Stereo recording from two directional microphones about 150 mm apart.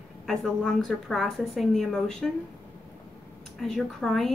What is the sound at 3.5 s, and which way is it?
Speech, centre (ahead or behind).